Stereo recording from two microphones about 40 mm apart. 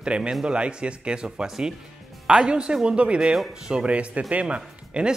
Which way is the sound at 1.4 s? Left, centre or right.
Centre.